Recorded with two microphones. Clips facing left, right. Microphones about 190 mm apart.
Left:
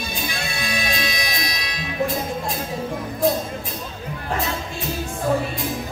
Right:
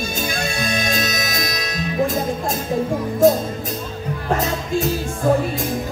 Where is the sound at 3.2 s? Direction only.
45° right (ahead or behind).